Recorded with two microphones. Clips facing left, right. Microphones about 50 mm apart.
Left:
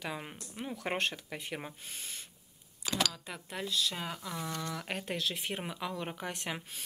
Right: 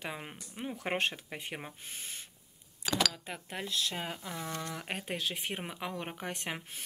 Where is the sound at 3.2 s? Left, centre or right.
Right.